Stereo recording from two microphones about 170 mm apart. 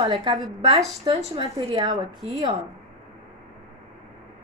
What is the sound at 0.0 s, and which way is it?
A woman's voice, 30° right (ahead or behind).